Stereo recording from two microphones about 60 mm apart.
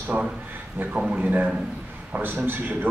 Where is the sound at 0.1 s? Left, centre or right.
Right.